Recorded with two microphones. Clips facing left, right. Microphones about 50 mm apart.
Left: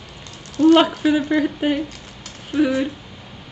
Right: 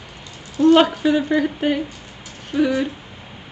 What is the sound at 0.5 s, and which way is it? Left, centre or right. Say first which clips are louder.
Speech: even; centre.